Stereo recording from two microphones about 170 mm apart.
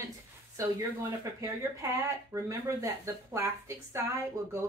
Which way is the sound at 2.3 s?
20° right (ahead or behind).